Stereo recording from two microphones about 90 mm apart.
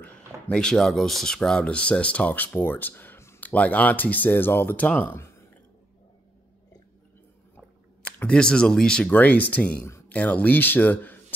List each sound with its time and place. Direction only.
0.5 s speech: 5° left (ahead or behind); by 5.3 s 25° left (ahead or behind)
8.2 s speech: 10° left (ahead or behind)